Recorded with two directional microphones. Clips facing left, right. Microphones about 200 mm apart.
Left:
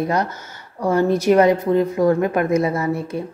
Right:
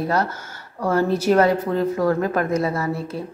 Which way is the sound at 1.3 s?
15° left (ahead or behind).